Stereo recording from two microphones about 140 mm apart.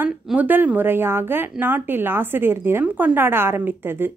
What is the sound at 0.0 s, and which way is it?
A woman's voice, 5° right (ahead or behind).